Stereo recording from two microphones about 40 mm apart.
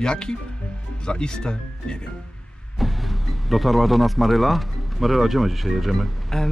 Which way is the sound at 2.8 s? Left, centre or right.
Centre.